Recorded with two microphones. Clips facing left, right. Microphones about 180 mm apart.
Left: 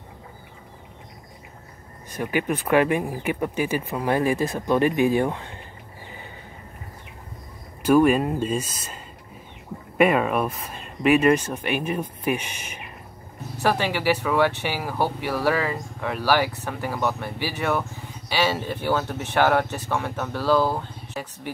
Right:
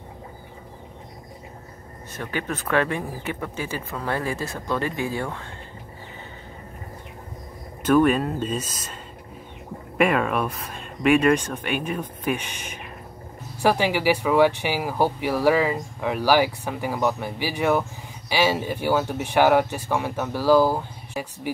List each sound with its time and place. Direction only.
2.1 s speech: 15° left (ahead or behind)
7.8 s speech: 10° left (ahead or behind)
9.9 s speech: centre (ahead or behind)
13.6 s speech: 10° right (ahead or behind)